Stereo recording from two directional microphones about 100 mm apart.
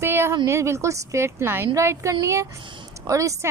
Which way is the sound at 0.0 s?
25° right (ahead or behind).